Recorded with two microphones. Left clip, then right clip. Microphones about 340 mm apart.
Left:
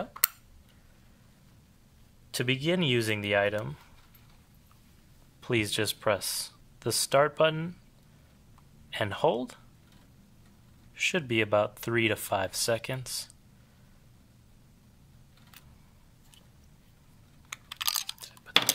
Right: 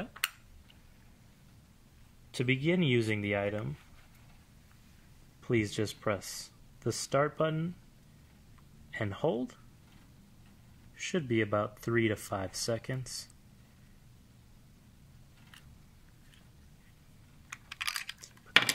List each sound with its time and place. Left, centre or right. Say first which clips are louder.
2.3 s speech: left 2 dB; left
5.4 s speech: left 3 dB; left
8.9 s speech: left 6 dB; left
11.1 s speech: left 4 dB; left
17.6 s computer keyboard: left 4 dB; centre